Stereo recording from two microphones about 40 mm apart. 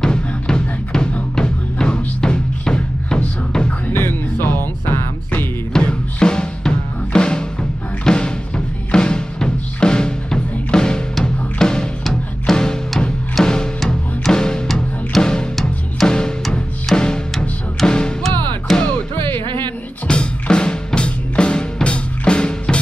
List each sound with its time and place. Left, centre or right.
0.0 s music: centre
3.9 s music: left
5.7 s drum: left
8.0 s music: left
15.1 s music: centre
16.1 s music: centre
18.7 s music: centre
20.1 s music: left